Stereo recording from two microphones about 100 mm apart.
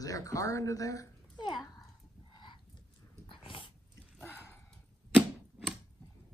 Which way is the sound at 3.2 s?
60° left (ahead or behind).